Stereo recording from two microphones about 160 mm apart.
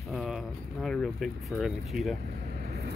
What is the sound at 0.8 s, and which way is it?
Speech, 5° left (ahead or behind).